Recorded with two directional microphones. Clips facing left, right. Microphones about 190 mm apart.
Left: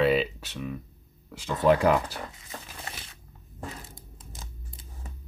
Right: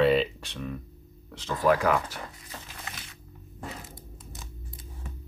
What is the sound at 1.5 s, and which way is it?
Speech, 25° left (ahead or behind).